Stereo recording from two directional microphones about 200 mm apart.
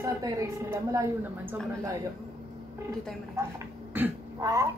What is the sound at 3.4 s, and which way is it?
Speech, 15° right (ahead or behind).